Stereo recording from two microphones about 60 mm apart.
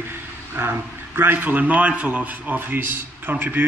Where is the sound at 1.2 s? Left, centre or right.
Right.